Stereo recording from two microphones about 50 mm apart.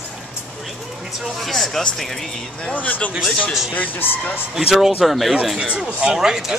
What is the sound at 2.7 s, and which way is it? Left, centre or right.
Speech, left.